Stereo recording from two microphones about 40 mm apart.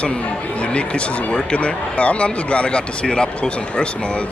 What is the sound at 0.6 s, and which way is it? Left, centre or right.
Speech, left.